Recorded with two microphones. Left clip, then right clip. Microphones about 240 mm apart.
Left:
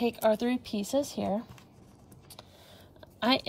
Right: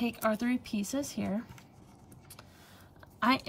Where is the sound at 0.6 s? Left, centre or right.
Centre.